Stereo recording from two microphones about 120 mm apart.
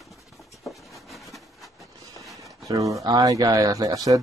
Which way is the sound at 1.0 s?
Centre (ahead or behind).